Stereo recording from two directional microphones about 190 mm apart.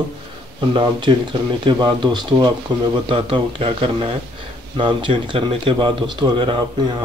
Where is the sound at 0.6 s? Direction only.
25° right (ahead or behind).